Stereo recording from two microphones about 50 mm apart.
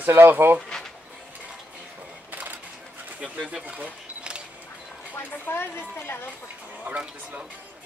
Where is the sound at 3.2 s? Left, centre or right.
Right.